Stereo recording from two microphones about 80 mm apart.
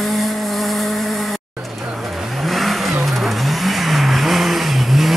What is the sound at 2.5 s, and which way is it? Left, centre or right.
Vehicle, centre.